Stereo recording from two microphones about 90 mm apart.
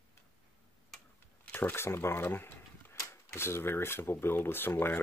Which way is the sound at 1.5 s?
25° left (ahead or behind).